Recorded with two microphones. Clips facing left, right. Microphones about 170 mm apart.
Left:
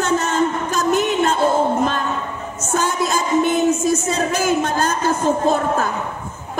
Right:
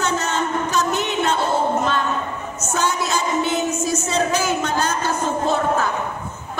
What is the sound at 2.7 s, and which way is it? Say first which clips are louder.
Music: left 2 dB; 50° left (ahead or behind).